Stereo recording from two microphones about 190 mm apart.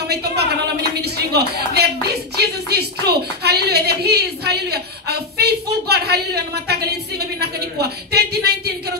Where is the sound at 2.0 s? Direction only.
60° right (ahead or behind).